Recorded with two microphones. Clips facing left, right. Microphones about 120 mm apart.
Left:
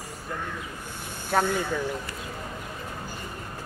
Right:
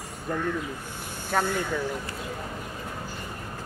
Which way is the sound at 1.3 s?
5° left (ahead or behind).